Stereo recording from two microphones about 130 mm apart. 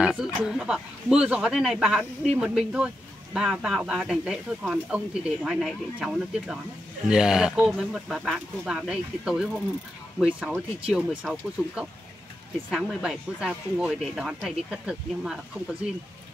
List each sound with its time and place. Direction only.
0.0 s speech: 5° right (ahead or behind)